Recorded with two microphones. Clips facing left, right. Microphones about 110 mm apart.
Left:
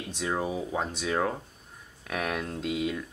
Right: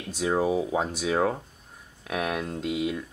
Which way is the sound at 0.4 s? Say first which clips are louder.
Right 7 dB; 5° right (ahead or behind).